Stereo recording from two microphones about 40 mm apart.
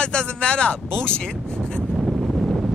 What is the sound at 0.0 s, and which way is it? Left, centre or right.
Speech, left.